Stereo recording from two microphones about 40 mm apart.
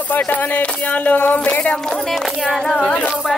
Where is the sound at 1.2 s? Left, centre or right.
Left.